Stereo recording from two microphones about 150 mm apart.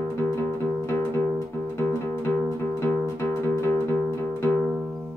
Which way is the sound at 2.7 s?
20° left (ahead or behind).